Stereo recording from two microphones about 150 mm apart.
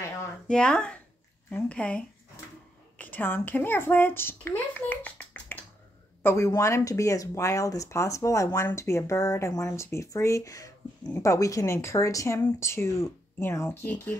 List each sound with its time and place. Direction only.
0.5 s speech: 5° left (ahead or behind)